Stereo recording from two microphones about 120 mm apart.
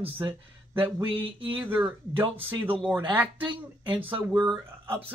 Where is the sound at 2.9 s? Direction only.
15° right (ahead or behind).